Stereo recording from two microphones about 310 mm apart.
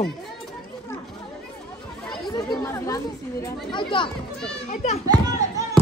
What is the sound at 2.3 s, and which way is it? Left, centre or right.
Speech, centre.